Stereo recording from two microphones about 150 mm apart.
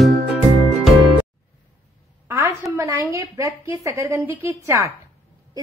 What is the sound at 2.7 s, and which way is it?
A woman's voice, 20° right (ahead or behind).